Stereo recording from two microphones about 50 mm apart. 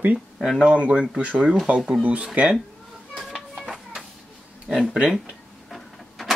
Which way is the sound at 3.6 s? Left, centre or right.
Centre.